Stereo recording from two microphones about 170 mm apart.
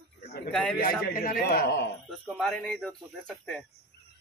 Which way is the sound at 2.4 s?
5° left (ahead or behind).